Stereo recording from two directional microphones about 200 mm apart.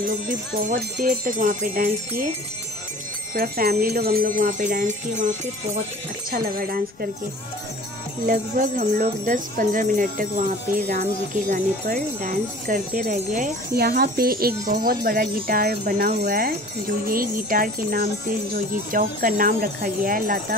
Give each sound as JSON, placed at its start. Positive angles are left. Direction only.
{"t": 0.0, "sound": "speech", "side_deg": -40}
{"t": 3.3, "sound": "speech", "side_deg": -50}
{"t": 6.3, "sound": "speech", "side_deg": -45}
{"t": 8.3, "sound": "speech", "side_deg": -45}